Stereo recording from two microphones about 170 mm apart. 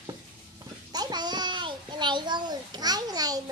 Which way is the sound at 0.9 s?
25° right (ahead or behind).